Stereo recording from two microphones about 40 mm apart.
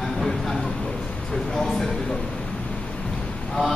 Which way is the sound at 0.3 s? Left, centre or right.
Centre.